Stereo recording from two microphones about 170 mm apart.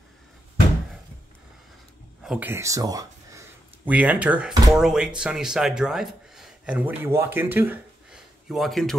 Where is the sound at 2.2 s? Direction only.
10° right (ahead or behind).